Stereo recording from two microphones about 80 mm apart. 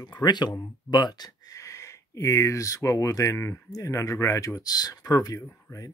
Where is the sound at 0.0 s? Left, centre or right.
Left.